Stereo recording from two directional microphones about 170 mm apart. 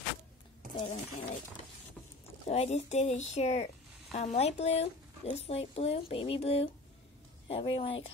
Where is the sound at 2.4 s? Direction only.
40° left (ahead or behind).